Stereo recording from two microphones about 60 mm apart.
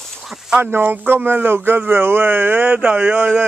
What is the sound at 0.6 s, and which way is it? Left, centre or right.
Speech, right.